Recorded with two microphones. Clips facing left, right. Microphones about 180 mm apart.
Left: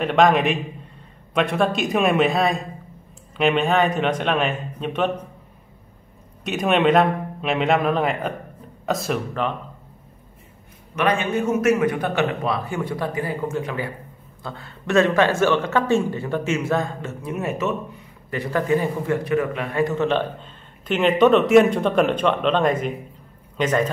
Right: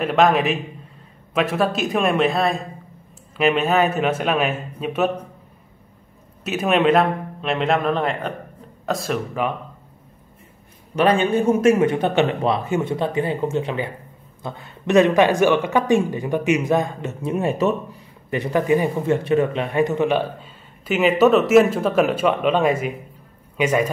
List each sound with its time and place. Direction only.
0.0 s a man's voice: centre (ahead or behind)
6.4 s a man's voice: 5° right (ahead or behind)
11.0 s a man's voice: 30° right (ahead or behind)
18.3 s a man's voice: 20° right (ahead or behind)